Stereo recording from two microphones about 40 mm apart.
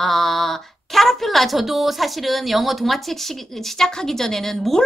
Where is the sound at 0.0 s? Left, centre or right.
Centre.